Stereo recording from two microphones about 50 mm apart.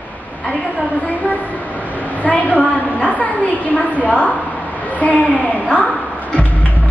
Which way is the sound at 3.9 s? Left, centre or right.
Left.